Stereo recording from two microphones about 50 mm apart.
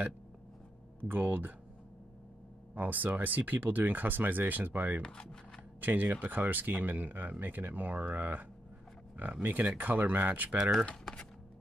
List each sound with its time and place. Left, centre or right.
1.0 s speech: right
2.7 s speech: right
5.0 s speech: centre
5.8 s speech: right
11.1 s speech: centre